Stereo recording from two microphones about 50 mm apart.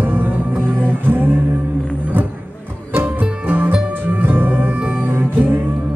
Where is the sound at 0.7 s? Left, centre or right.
Left.